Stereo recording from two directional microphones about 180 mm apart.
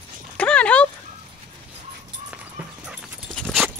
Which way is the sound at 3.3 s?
5° left (ahead or behind).